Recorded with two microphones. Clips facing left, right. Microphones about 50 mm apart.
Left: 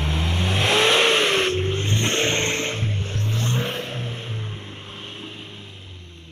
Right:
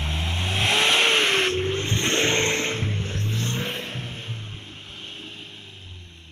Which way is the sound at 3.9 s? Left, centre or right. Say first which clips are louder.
Left 3 dB; left.